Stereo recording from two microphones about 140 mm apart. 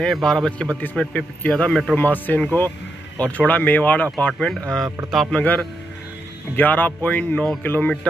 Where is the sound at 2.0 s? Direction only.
10° left (ahead or behind).